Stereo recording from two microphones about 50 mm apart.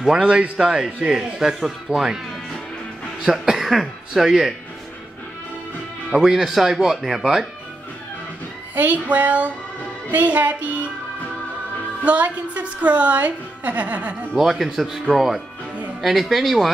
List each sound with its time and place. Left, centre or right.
0.1 s a man's voice: right
3.3 s a man's voice: centre
6.1 s a man's voice: centre
8.7 s music: right
12.0 s a woman's voice: right
14.3 s speech: centre